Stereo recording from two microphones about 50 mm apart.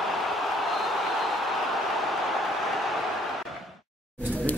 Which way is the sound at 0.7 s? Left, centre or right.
Centre.